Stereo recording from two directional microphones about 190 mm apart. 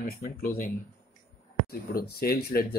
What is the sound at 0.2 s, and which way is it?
Speech, 45° left (ahead or behind).